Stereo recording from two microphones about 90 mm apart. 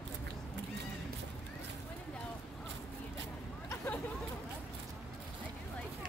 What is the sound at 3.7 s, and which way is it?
Hubbub, 25° left (ahead or behind).